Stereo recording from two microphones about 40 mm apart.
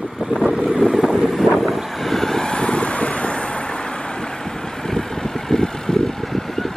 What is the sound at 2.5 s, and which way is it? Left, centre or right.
Vehicle, left.